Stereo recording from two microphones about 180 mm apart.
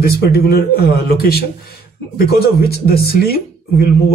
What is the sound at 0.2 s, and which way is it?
Speech, 60° left (ahead or behind).